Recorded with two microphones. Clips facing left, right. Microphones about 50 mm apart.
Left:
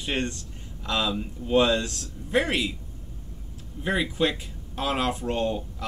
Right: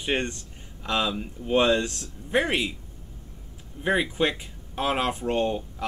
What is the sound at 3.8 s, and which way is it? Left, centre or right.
Speech, centre.